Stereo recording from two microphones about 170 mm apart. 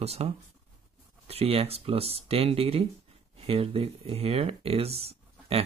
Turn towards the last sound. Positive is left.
turn(degrees=-35)  # may be behind; listen again after turning